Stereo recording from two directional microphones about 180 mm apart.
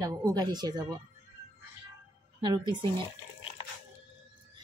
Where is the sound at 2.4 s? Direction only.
25° right (ahead or behind).